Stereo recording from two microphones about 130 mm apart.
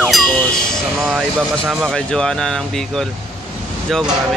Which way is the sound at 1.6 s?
20° right (ahead or behind).